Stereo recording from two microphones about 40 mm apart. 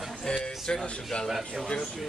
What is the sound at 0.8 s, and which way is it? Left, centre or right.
Speech, left.